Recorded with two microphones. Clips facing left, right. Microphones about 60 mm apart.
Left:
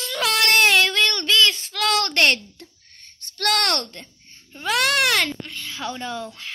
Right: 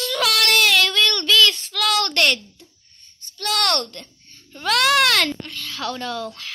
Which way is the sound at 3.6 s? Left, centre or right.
Left.